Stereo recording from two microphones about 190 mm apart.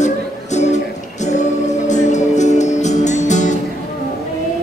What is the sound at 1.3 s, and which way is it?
Music, 40° left (ahead or behind).